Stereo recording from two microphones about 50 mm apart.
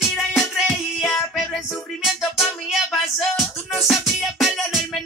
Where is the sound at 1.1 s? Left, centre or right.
Centre.